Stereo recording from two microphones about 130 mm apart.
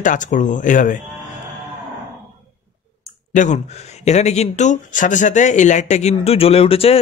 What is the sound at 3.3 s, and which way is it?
Speech, 75° left (ahead or behind).